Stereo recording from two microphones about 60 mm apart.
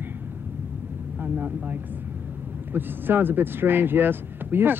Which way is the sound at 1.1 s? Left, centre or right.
Right.